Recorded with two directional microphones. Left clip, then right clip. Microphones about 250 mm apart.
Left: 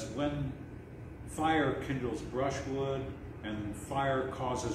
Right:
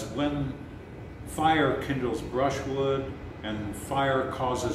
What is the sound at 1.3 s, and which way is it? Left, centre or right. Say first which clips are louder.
Speech: right 6 dB; centre.